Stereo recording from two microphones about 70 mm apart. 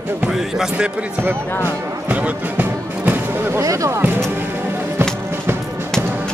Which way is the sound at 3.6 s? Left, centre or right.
Right.